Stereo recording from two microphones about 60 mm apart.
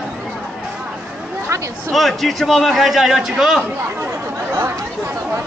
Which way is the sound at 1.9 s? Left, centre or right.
Centre.